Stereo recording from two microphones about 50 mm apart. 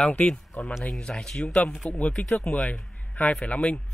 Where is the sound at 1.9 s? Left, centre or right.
Left.